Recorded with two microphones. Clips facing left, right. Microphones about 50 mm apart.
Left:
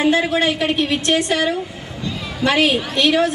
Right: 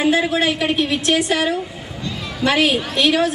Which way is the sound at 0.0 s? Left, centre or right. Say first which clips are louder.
Left 1 dB; centre.